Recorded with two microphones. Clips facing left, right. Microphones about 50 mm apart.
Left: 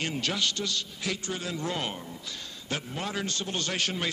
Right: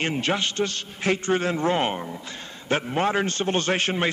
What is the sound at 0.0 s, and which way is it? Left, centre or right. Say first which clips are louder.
A man's voice: right 5 dB; right.